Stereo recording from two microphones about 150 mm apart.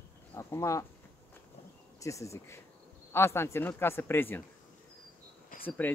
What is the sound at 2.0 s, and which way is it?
Speech, 20° left (ahead or behind).